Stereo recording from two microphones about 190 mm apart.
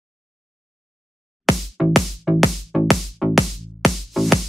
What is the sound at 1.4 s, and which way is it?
Music, centre (ahead or behind).